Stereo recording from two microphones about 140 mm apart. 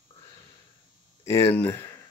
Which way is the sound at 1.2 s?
20° left (ahead or behind).